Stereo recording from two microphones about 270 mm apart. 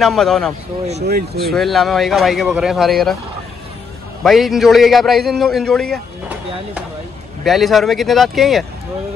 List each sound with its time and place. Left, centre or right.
0.0 s a man's voice: centre
1.0 s speech: right
1.4 s a man's voice: centre
4.2 s a man's voice: centre